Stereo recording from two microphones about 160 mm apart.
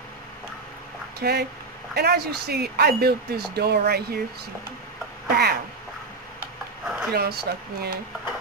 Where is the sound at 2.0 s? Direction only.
85° right.